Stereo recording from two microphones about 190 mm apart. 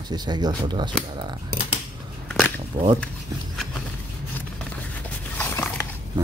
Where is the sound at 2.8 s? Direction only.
25° right (ahead or behind).